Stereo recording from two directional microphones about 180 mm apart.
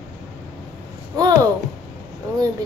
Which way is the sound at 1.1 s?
20° right (ahead or behind).